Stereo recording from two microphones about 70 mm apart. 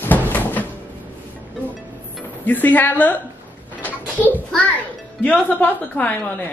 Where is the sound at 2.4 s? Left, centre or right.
Left.